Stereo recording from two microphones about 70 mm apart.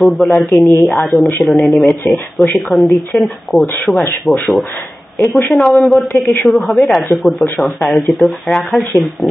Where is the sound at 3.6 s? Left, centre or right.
Left.